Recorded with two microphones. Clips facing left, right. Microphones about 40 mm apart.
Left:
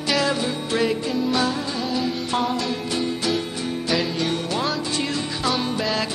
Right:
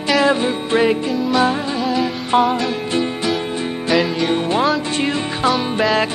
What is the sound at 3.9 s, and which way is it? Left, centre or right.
Music, centre.